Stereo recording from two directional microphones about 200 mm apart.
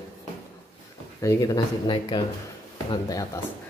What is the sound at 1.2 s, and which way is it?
A man's voice, 20° left (ahead or behind).